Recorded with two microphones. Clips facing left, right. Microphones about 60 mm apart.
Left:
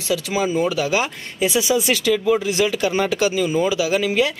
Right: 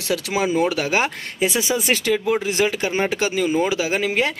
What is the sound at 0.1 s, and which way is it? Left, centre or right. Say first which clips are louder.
Speech: left 1 dB; right.